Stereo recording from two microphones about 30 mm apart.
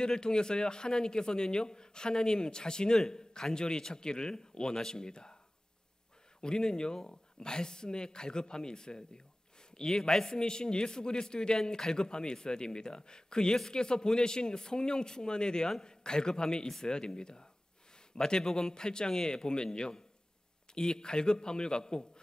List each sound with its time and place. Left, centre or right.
0.0 s speech: left
6.4 s speech: left